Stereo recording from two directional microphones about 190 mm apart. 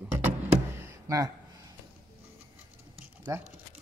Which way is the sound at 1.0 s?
20° right (ahead or behind).